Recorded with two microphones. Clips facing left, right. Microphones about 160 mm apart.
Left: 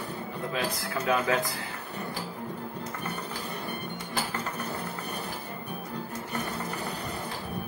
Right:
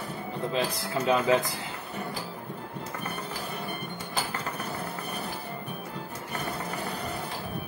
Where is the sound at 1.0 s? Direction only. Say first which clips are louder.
Right 2 dB; 15° right (ahead or behind).